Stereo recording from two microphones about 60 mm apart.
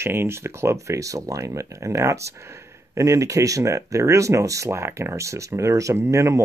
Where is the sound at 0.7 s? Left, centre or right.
Right.